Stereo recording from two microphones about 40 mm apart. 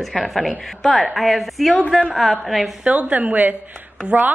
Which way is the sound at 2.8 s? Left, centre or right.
Right.